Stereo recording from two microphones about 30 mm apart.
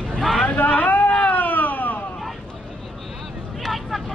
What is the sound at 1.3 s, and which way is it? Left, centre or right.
Cat, left.